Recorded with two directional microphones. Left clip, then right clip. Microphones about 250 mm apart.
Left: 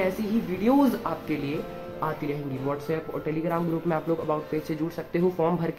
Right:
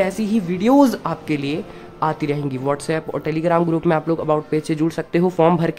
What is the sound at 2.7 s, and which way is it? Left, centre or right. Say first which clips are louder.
Speech: right 8 dB; right.